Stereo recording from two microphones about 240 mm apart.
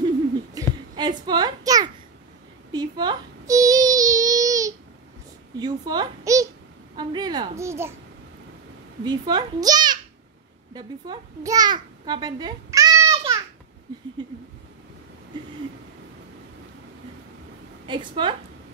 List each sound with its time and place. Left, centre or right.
0.6 s a sound: centre
2.7 s child singing: centre
5.6 s a sound: centre
9.0 s a child's voice: centre
13.1 s babbling: centre
17.8 s a woman's voice: centre